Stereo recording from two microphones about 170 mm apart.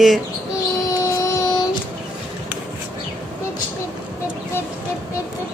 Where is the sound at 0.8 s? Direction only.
20° left (ahead or behind).